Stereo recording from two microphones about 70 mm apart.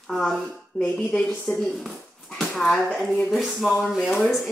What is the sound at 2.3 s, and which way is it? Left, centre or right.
A woman's voice, centre.